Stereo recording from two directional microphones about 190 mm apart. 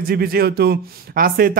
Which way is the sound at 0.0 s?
50° right (ahead or behind).